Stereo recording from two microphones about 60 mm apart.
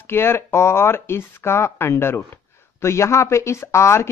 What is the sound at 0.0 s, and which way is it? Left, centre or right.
Speech, left.